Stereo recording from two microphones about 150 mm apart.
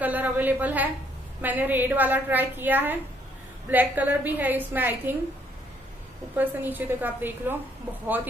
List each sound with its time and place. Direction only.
0.0 s a woman's voice: 10° right (ahead or behind)
6.3 s a woman's voice: 10° right (ahead or behind)